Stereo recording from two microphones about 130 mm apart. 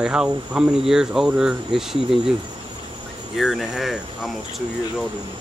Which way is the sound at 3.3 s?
Centre (ahead or behind).